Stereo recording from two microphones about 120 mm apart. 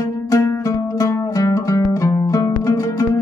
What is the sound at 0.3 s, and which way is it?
Music, 30° left (ahead or behind).